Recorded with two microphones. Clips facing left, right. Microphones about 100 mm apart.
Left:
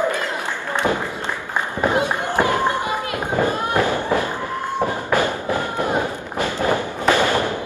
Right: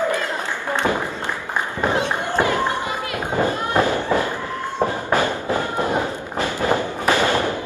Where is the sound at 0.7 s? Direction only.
15° left (ahead or behind).